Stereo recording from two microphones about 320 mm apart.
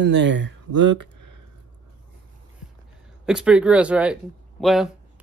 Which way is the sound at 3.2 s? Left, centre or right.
Centre.